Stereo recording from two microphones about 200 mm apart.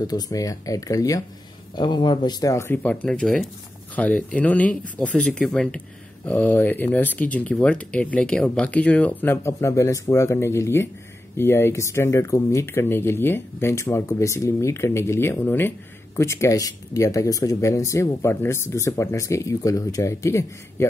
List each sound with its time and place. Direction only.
0.0 s speech: 20° left (ahead or behind)